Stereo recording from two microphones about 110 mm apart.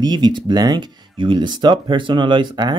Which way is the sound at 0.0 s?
40° right (ahead or behind).